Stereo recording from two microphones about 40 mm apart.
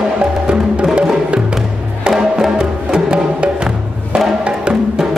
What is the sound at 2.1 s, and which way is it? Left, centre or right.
Music, centre.